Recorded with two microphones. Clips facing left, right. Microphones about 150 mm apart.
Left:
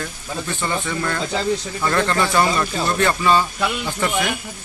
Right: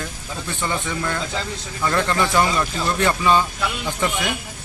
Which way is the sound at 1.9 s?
10° right (ahead or behind).